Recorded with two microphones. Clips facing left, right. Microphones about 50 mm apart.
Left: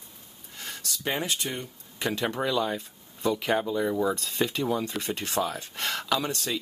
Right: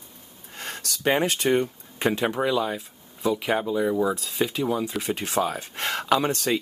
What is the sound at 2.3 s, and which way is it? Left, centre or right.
Speech, centre.